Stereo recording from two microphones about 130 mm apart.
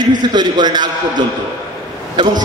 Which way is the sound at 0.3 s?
35° right (ahead or behind).